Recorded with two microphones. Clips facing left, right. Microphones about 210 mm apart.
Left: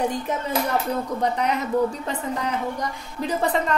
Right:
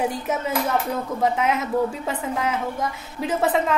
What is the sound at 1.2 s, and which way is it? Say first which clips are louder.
Speech: right 4 dB; 5° right (ahead or behind).